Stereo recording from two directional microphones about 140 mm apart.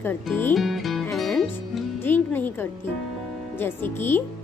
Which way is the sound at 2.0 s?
15° left (ahead or behind).